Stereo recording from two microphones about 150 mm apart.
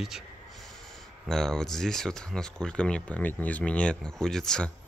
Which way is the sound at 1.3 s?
5° left (ahead or behind).